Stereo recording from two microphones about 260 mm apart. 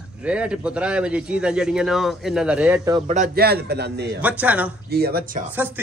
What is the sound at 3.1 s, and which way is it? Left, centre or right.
A man's voice, right.